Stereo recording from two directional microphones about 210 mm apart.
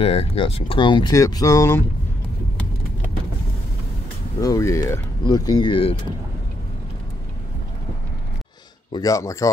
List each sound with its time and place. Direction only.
0.0 s speech: 30° left (ahead or behind); by 1.9 s 15° left (ahead or behind)
4.4 s speech: 15° left (ahead or behind)
8.9 s speech: 15° left (ahead or behind)